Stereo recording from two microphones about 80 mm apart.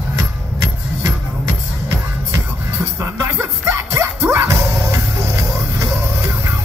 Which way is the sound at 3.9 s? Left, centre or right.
Right.